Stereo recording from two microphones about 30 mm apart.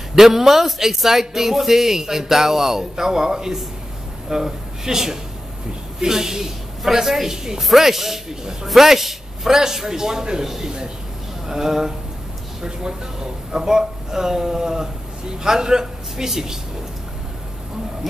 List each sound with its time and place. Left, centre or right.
0.1 s speech: centre
7.6 s speech: centre